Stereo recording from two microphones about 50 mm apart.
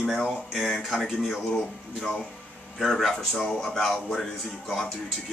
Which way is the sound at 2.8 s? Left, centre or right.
Centre.